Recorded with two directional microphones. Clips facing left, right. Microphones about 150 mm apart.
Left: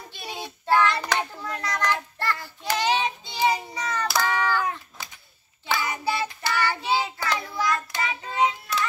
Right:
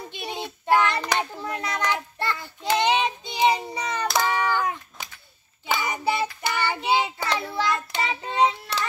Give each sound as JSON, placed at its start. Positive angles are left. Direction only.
{"t": 0.1, "sound": "child singing", "side_deg": -20}